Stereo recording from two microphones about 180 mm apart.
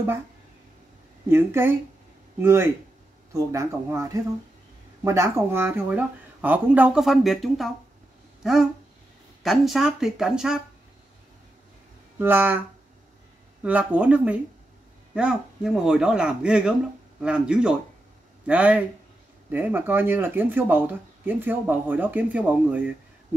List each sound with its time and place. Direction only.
1.3 s speech: 15° right (ahead or behind)
9.4 s speech: centre (ahead or behind)
12.2 s speech: 10° right (ahead or behind)